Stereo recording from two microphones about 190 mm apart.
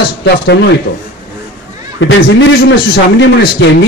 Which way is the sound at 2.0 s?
70° left (ahead or behind).